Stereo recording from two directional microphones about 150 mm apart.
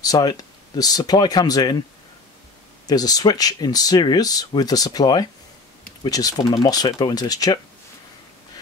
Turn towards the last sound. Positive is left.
turn(degrees=25)  # may be behind; listen again after turning